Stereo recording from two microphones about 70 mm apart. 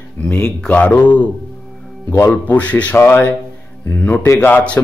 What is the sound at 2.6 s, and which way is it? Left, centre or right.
A man's voice, centre.